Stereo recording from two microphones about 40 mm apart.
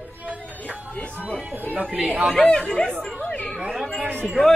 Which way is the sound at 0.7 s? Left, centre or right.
Left.